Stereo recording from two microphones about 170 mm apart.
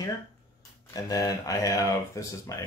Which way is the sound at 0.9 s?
20° left (ahead or behind).